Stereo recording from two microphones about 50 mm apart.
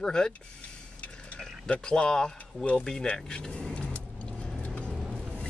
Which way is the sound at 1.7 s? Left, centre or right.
Centre.